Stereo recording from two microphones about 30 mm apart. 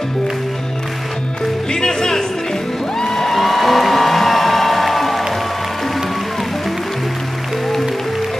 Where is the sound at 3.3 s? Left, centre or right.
Centre.